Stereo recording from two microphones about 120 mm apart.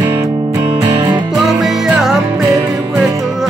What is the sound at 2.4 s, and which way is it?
Music, 30° right (ahead or behind).